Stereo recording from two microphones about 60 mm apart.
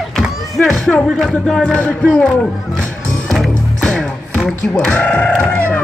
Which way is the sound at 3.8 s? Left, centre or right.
Centre.